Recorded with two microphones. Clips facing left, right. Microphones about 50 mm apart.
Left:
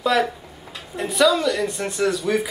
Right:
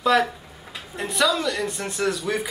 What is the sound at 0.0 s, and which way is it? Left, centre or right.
Speech, centre.